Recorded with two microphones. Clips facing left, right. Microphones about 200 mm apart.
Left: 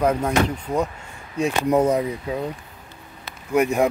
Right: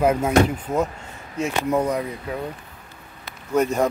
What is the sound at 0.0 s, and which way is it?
Speech, 5° right (ahead or behind).